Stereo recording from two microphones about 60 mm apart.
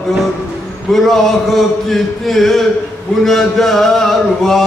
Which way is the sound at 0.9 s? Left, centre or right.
Centre.